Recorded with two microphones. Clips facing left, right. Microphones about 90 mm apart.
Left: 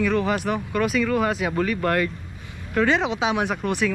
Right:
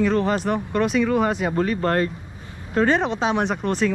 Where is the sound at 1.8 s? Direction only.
35° right (ahead or behind).